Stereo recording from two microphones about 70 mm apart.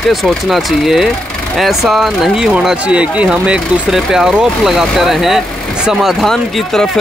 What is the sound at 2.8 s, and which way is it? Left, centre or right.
Speech, centre.